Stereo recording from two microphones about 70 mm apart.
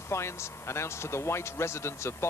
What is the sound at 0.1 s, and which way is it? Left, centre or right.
A man's voice, left.